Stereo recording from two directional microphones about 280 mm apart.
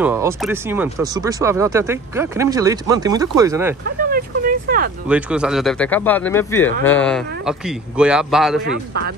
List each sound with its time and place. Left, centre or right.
0.0 s speech: centre
4.1 s speech: right
5.0 s speech: centre
8.7 s speech: right